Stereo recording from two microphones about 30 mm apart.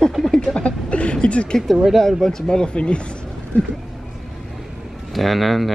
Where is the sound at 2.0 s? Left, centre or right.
Centre.